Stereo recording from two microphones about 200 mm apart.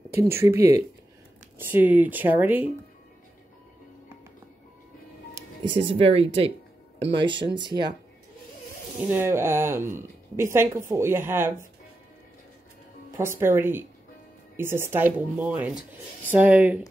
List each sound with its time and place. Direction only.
0.1 s speech: 15° right (ahead or behind)
5.8 s speech: 30° right (ahead or behind)
9.1 s speech: 10° right (ahead or behind)
13.1 s speech: 10° right (ahead or behind)